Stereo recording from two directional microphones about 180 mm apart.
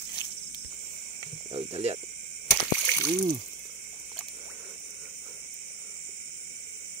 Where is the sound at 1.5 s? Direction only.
35° right (ahead or behind).